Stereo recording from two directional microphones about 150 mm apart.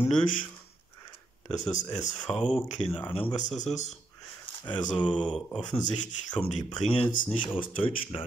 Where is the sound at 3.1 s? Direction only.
35° left (ahead or behind).